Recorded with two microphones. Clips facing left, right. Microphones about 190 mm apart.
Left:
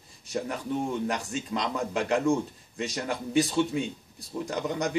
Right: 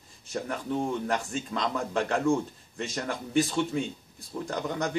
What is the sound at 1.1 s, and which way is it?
A man's voice, 15° left (ahead or behind).